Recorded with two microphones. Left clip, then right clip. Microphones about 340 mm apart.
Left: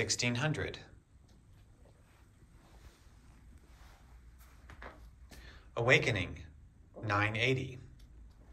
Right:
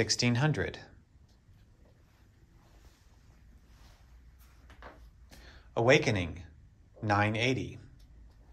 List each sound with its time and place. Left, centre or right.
0.0 s speech: centre
5.3 s a sound: centre
7.0 s a man's voice: centre